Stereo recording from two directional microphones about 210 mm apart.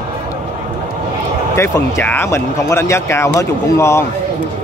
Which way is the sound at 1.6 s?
10° left (ahead or behind).